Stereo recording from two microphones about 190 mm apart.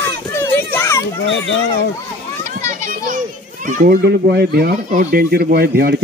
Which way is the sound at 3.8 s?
60° right (ahead or behind).